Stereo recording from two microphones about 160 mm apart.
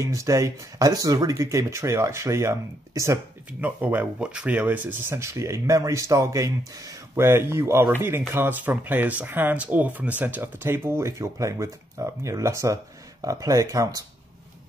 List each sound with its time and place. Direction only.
0.0 s speech: 20° right (ahead or behind)